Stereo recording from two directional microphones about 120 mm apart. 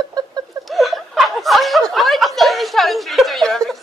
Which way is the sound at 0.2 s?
35° right (ahead or behind).